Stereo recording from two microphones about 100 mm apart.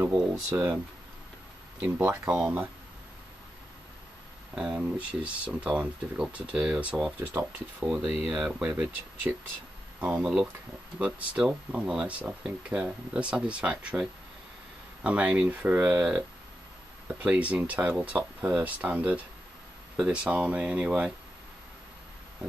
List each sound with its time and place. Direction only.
0.3 s speech: 25° right (ahead or behind)
1.8 s speech: 20° right (ahead or behind)
4.6 s speech: 10° right (ahead or behind)
7.3 s speech: 30° right (ahead or behind)
7.9 s speech: 5° right (ahead or behind)
15.0 s speech: 10° right (ahead or behind)